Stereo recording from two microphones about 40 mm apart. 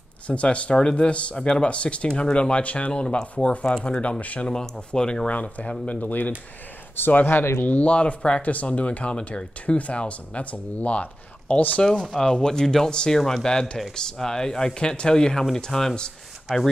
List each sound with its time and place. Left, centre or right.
0.3 s speech: left
2.9 s speech: left
4.5 s speech: left
5.3 s speech: left
7.3 s speech: left
7.6 s speech: left
7.9 s speech: left
11.8 s speech: centre
12.9 s speech: left